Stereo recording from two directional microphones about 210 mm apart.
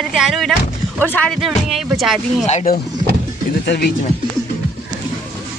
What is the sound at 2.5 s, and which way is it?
Speech, 35° left (ahead or behind).